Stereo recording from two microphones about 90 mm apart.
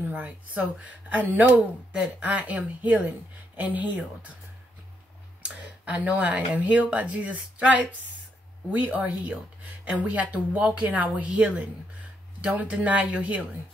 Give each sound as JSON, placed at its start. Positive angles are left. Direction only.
{"t": 0.0, "sound": "a woman's voice", "side_deg": -20}
{"t": 5.4, "sound": "a woman's voice", "side_deg": -15}